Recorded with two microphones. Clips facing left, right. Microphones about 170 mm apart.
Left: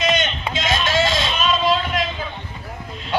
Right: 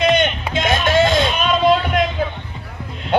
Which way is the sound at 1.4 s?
55° right (ahead or behind).